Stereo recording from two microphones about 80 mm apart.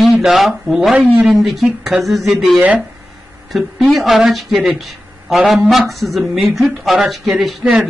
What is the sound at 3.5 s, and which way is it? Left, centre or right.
A man's voice, centre.